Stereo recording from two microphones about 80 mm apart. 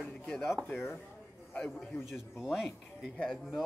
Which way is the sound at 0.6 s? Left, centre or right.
Left.